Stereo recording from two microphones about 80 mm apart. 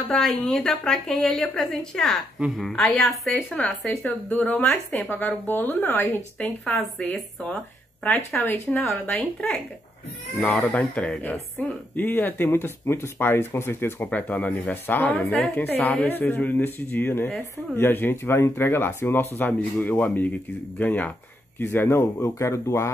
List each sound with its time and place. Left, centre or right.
0.1 s speech: centre
3.5 s speech: centre
9.1 s speech: centre; by 22.8 s left